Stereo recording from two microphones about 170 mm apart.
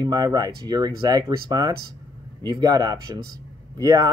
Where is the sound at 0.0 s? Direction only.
25° right (ahead or behind).